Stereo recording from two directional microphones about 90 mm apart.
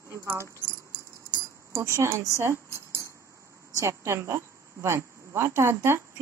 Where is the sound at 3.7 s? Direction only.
35° right (ahead or behind).